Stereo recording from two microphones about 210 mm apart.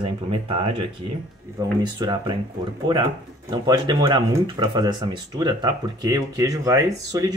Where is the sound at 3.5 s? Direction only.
20° right (ahead or behind).